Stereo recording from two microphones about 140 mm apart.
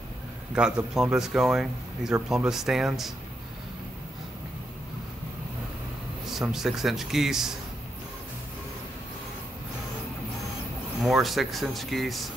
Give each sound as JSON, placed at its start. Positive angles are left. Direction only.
{"t": 0.6, "sound": "speech", "side_deg": -5}
{"t": 6.3, "sound": "speech", "side_deg": -5}
{"t": 11.0, "sound": "speech", "side_deg": 0}